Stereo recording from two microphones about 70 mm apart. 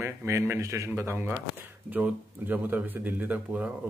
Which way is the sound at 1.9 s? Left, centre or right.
Right.